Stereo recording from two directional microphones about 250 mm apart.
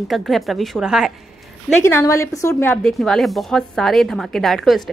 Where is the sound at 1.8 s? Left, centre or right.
Centre.